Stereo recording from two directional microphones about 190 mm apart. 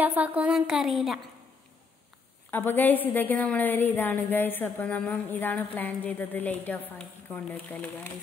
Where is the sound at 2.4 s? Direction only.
10° left (ahead or behind).